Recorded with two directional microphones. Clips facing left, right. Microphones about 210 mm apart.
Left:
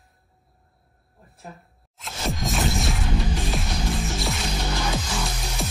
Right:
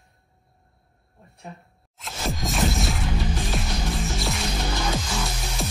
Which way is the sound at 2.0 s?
Centre (ahead or behind).